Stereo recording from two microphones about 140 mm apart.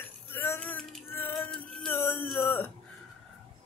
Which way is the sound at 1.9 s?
15° left (ahead or behind).